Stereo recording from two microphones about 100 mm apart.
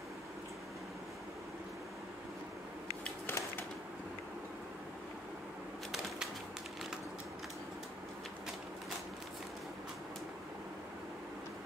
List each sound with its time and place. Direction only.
3.3 s typewriter: 20° left (ahead or behind)